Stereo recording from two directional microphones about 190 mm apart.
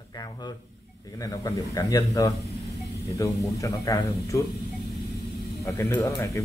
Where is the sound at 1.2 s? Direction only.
20° left (ahead or behind).